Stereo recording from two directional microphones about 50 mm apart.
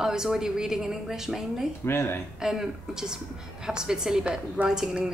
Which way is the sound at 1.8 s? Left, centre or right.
Left.